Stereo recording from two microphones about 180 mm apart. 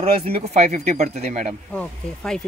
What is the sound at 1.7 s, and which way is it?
Speech, 5° left (ahead or behind).